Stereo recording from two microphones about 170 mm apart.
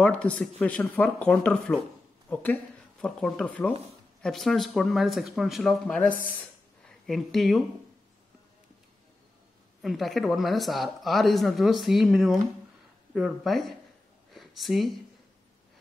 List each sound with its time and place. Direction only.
0.0 s speech: 5° left (ahead or behind)
9.8 s speech: centre (ahead or behind)
14.3 s a sound: centre (ahead or behind)